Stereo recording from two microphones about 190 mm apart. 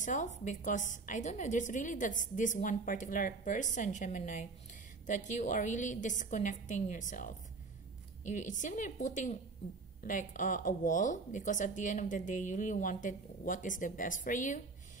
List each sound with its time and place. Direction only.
0.0 s a woman's voice: 40° left (ahead or behind)